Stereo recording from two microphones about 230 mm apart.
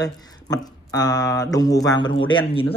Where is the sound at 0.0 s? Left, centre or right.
Centre.